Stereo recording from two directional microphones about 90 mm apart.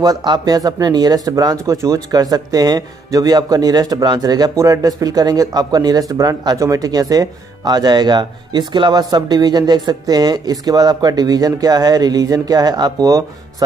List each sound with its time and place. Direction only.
0.0 s speech: 50° right (ahead or behind)